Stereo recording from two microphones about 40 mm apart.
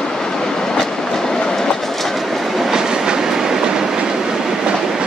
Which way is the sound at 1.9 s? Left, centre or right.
Centre.